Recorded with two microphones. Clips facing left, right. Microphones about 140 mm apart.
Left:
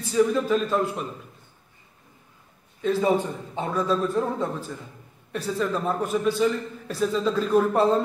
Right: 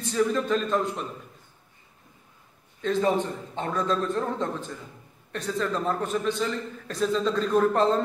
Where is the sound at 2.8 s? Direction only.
10° left (ahead or behind).